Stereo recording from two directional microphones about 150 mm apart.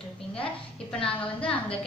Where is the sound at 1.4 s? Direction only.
35° left (ahead or behind).